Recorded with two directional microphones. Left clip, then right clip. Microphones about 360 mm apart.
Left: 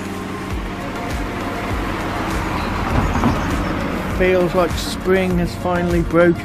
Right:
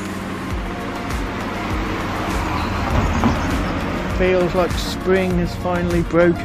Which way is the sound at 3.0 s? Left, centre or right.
Right.